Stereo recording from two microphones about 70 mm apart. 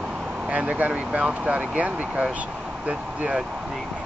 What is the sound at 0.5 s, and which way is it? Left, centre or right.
Speech, centre.